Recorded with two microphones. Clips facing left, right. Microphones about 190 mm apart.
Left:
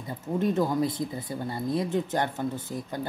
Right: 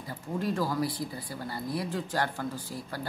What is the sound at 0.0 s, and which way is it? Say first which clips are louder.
Speech: left 5 dB; 20° left (ahead or behind).